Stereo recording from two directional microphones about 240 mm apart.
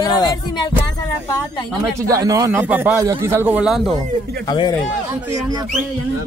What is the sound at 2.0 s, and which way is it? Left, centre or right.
A man's voice, centre.